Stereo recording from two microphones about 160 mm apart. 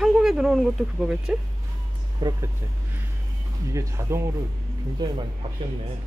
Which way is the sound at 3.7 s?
15° right (ahead or behind).